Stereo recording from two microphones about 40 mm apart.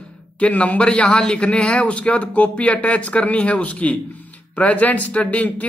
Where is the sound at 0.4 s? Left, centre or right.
Left.